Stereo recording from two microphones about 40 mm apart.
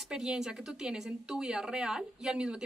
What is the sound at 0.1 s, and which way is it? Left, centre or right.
Speech, centre.